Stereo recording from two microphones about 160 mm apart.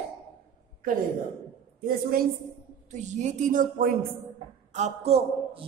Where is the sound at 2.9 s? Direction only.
45° right (ahead or behind).